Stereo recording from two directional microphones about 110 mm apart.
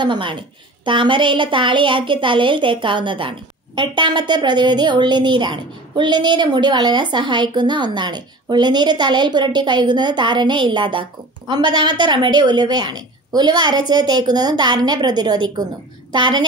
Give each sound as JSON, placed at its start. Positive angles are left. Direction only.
{"t": 0.0, "sound": "a woman's voice", "side_deg": -45}